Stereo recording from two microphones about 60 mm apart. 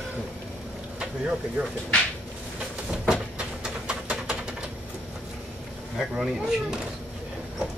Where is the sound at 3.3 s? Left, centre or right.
Centre.